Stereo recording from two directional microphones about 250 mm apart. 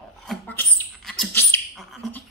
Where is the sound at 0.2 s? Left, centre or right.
Centre.